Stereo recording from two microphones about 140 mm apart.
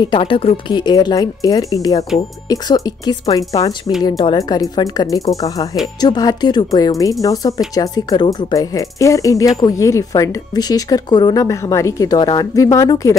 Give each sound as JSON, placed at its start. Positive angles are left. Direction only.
{"t": 0.0, "sound": "speech", "side_deg": 35}